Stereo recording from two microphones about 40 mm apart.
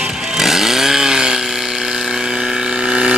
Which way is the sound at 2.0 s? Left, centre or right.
Centre.